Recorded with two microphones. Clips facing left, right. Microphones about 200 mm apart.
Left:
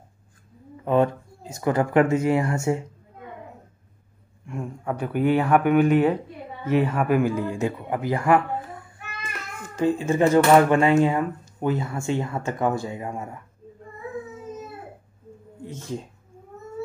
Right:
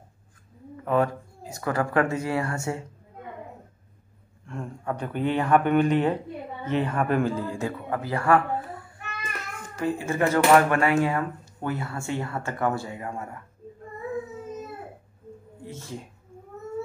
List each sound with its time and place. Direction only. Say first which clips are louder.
0.8 s speech: left 3 dB; 20° left (ahead or behind)
4.5 s speech: left 2 dB; 10° left (ahead or behind)
9.8 s speech: left 5 dB; 20° left (ahead or behind)
15.6 s speech: left 5 dB; 20° left (ahead or behind)